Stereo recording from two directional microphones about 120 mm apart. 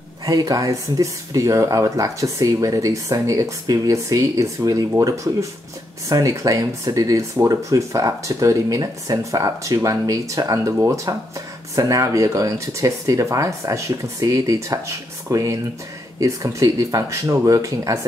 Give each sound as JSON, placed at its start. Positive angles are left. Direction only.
{"t": 0.2, "sound": "speech", "side_deg": -30}